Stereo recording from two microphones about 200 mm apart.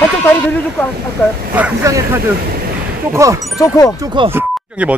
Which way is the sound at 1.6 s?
15° right (ahead or behind).